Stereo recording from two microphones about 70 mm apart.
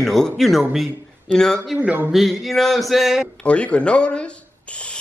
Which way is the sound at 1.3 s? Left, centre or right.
Centre.